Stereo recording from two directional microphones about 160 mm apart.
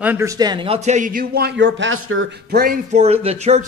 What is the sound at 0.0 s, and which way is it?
Speech, 10° right (ahead or behind).